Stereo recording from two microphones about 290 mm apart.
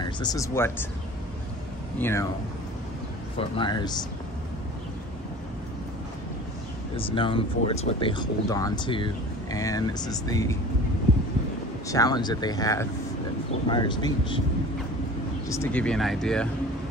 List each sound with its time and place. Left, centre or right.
0.0 s speech: centre
2.0 s speech: centre
3.3 s speech: centre
7.0 s speech: centre
11.9 s speech: centre
15.4 s speech: centre